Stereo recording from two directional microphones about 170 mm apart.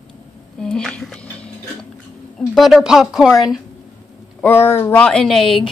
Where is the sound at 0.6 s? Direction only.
5° left (ahead or behind).